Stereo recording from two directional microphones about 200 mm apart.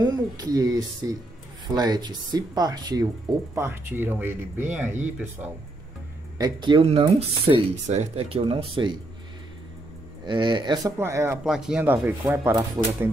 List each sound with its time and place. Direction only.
0.0 s speech: 20° right (ahead or behind)
6.3 s speech: 20° right (ahead or behind)
10.2 s speech: 25° right (ahead or behind)
11.4 s speech: 5° right (ahead or behind)